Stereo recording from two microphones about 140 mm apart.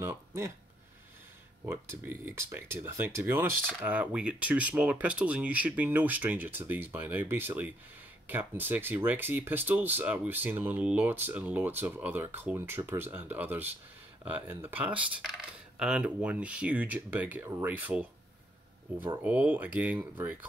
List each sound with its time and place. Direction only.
0.0 s speech: 20° right (ahead or behind)
1.7 s speech: 15° right (ahead or behind)
19.2 s speech: 10° right (ahead or behind)